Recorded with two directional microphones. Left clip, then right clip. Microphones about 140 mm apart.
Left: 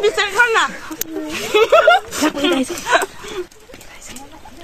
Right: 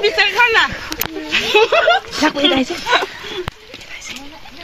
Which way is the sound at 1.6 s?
40° left (ahead or behind).